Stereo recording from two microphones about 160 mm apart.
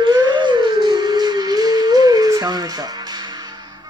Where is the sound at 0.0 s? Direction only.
25° right (ahead or behind).